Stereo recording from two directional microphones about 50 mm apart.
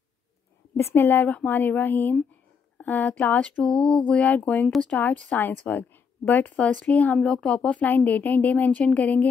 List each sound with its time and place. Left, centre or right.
0.7 s a woman's voice: left
1.2 s a woman's voice: left
3.6 s a sound: centre
5.4 s a woman's voice: left
7.2 s a sound: centre
7.8 s a woman's voice: left